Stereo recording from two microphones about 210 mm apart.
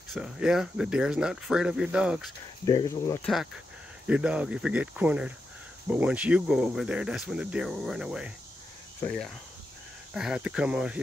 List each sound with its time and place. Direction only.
0.1 s speech: 5° right (ahead or behind)
2.6 s speech: 20° left (ahead or behind)
4.1 s speech: 5° right (ahead or behind)